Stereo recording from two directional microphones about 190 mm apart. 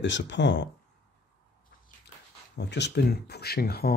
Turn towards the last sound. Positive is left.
turn(degrees=55)  # may be behind; listen again after turning